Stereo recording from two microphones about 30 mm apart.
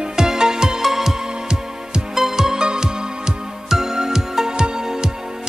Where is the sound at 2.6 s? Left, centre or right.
Right.